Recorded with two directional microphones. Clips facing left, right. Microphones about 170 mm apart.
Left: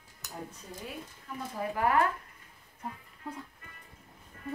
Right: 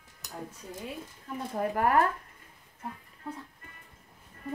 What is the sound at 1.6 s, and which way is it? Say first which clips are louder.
Speech: right 3 dB; 45° right (ahead or behind).